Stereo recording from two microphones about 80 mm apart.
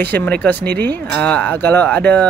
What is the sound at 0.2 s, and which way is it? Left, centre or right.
Speech, left.